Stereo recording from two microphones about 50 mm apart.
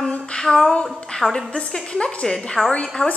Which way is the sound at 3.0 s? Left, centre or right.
Left.